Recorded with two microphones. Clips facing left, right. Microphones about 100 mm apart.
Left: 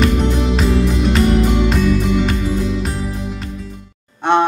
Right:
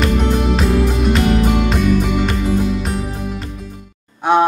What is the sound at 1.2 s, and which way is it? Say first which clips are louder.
Music: left 2 dB; 55° right (ahead or behind).